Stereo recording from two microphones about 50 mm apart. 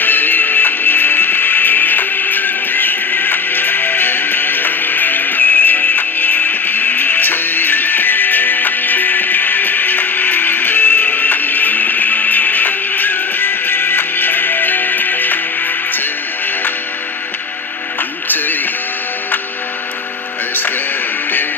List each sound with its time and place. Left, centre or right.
0.0 s music: left